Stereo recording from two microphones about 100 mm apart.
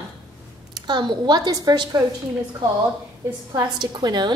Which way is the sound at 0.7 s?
50° right (ahead or behind).